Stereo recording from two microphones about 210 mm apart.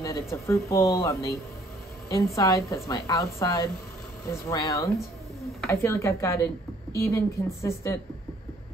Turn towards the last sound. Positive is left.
turn(degrees=15)  # may be behind; listen again after turning